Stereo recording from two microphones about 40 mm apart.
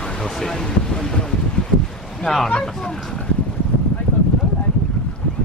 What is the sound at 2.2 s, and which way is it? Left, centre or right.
Speech, centre.